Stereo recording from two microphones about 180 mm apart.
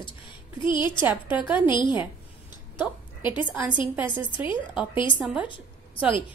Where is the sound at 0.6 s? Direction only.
25° left (ahead or behind).